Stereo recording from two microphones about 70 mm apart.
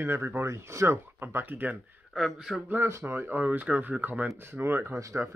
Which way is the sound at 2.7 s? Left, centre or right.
Right.